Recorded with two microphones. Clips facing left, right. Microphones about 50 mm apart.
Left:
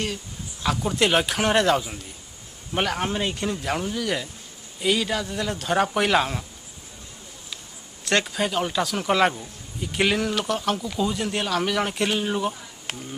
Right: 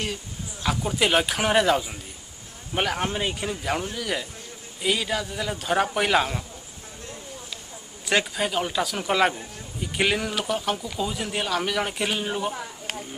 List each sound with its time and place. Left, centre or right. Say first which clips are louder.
0.0 s speech: left 1 dB; centre
8.0 s speech: left 1 dB; centre